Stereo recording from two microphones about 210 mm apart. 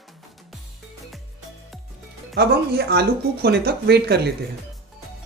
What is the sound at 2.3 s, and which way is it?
Speech, 50° right (ahead or behind).